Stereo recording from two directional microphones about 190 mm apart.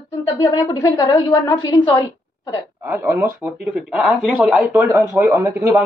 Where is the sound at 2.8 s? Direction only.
10° right (ahead or behind).